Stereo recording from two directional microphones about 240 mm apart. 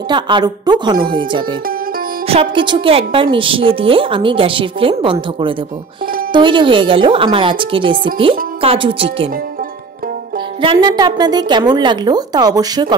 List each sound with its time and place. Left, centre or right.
0.1 s a woman's voice: centre
2.2 s a woman's voice: right
10.6 s a woman's voice: centre